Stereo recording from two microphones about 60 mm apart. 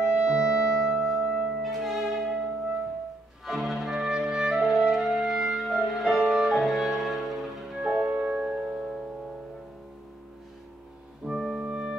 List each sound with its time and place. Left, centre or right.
0.0 s music: centre
3.4 s music: centre
7.9 s organ: centre
8.4 s music: centre
11.4 s music: centre